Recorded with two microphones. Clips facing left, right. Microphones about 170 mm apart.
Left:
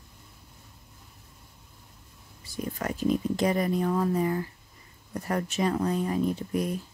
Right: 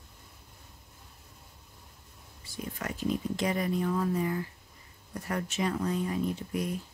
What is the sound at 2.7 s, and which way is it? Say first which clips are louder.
Speech: left 5 dB; 40° left (ahead or behind).